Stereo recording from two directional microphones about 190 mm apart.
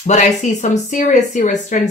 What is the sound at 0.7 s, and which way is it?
Speech, 40° left (ahead or behind).